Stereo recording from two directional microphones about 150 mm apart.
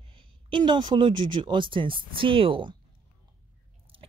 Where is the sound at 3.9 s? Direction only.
35° right (ahead or behind).